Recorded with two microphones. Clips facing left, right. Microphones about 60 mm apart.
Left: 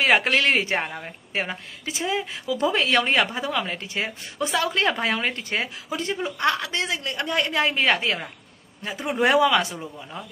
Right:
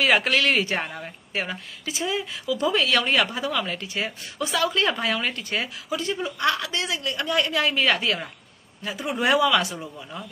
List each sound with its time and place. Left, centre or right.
0.0 s a woman's voice: left
0.7 s a woman's voice: centre
2.0 s a woman's voice: left
4.4 s a woman's voice: left
4.9 s a woman's voice: left
5.9 s a woman's voice: left
6.2 s a woman's voice: left
9.2 s speech: left
9.8 s speech: centre